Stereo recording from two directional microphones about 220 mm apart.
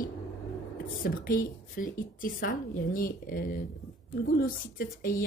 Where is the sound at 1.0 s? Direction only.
40° left (ahead or behind).